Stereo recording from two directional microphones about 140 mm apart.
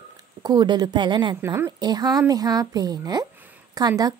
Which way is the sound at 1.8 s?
30° right (ahead or behind).